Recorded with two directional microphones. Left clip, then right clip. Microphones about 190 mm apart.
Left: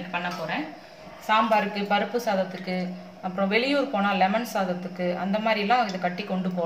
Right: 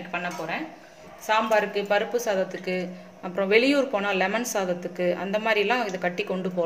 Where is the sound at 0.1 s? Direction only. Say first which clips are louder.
Even; 55° right (ahead or behind).